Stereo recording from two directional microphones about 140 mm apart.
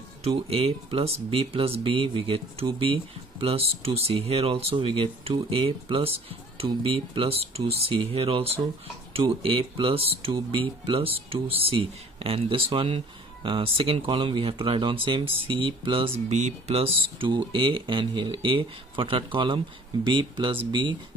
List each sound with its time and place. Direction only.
0.2 s speech: 45° right (ahead or behind)
16.3 s speech: 55° right (ahead or behind); by 20.5 s 35° right (ahead or behind)